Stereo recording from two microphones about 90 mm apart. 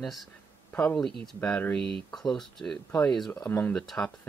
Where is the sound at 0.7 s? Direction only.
10° left (ahead or behind).